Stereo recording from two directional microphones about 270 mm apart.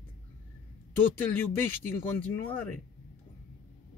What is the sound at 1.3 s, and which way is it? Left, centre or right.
Speech, centre.